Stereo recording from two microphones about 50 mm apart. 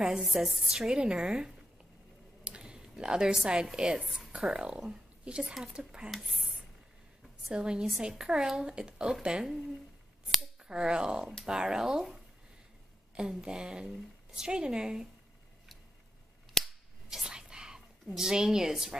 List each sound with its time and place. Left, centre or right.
0.3 s a woman's voice: centre
2.4 s a sound: centre
3.4 s a woman's voice: centre
6.0 s speech: centre
7.5 s a woman's voice: centre
16.6 s scissors: centre
17.1 s whispering: centre